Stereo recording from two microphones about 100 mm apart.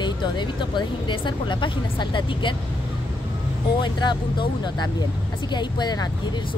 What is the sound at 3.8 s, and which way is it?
Speech, 45° left (ahead or behind).